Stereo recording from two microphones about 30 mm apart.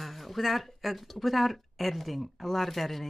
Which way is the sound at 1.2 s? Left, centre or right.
Centre.